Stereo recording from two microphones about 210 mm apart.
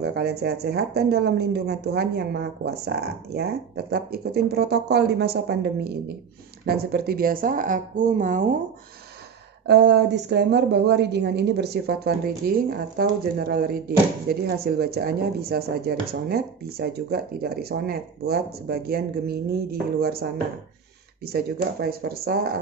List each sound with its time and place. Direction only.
0.0 s a woman's voice: 50° right (ahead or behind)
9.7 s a woman's voice: 55° right (ahead or behind)